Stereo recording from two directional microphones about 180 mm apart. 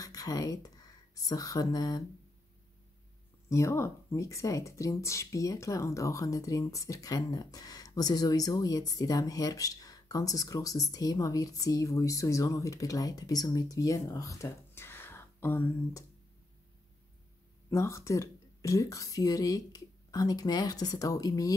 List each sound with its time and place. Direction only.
0.0 s speech: 20° left (ahead or behind)
3.4 s speech: 15° left (ahead or behind)
17.6 s speech: 15° left (ahead or behind)